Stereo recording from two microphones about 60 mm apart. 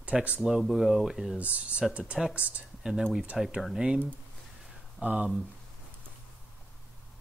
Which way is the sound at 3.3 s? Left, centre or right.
Centre.